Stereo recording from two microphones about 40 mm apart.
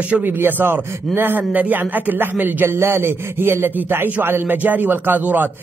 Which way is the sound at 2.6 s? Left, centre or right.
Right.